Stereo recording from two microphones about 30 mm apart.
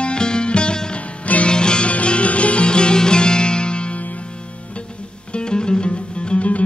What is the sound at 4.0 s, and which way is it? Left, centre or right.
Music, left.